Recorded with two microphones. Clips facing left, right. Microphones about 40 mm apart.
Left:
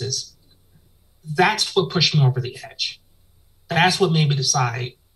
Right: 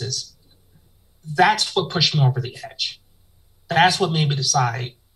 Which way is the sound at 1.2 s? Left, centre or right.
Centre.